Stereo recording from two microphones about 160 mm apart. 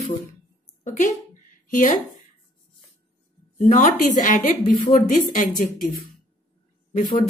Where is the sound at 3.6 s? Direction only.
55° left (ahead or behind).